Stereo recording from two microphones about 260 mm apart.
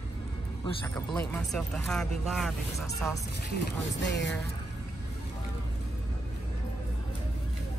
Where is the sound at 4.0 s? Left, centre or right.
Left.